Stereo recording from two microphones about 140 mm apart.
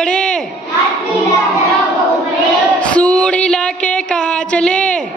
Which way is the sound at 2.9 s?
10° left (ahead or behind).